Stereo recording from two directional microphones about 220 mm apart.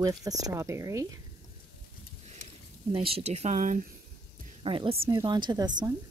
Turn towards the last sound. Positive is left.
turn(degrees=-20)  # may be behind; listen again after turning